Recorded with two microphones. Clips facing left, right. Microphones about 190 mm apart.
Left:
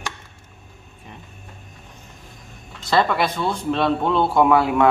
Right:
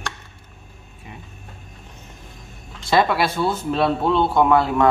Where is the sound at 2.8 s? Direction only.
10° right (ahead or behind).